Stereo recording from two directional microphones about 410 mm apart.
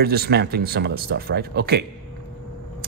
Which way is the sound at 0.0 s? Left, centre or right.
Right.